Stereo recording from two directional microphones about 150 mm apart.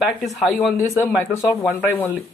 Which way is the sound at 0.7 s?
15° left (ahead or behind).